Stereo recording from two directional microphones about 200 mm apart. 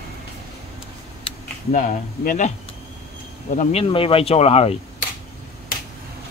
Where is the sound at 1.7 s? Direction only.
45° left (ahead or behind).